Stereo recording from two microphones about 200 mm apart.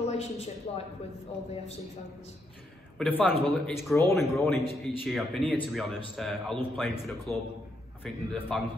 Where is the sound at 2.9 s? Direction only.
Centre (ahead or behind).